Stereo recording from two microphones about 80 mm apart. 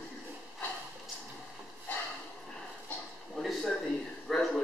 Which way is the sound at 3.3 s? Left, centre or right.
Centre.